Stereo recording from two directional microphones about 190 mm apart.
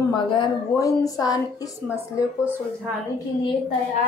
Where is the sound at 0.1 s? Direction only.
20° left (ahead or behind).